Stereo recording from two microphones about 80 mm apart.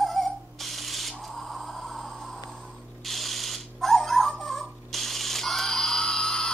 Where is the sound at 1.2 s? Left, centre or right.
Centre.